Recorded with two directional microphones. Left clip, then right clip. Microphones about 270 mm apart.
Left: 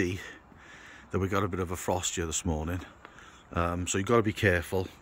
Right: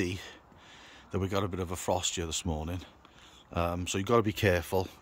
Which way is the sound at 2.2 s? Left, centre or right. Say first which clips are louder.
Left 2 dB; centre.